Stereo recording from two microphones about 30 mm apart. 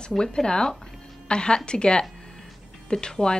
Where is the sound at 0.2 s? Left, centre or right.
Left.